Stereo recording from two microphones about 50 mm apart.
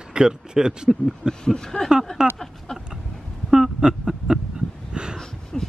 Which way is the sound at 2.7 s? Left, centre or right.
Centre.